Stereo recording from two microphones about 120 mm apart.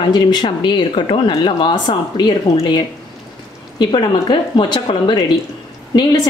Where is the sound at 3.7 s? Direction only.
40° left (ahead or behind).